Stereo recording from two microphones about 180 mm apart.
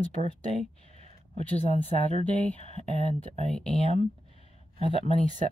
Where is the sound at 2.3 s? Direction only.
5° left (ahead or behind).